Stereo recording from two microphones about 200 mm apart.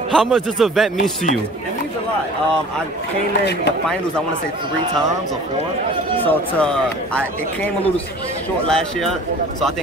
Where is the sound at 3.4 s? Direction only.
60° left (ahead or behind).